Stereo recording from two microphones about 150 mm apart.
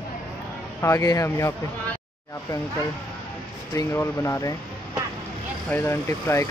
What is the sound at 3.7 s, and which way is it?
Speech, 20° left (ahead or behind).